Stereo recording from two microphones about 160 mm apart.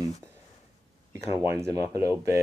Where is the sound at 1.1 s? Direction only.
20° right (ahead or behind).